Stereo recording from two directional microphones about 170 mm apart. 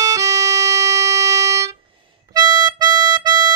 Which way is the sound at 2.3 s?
20° right (ahead or behind).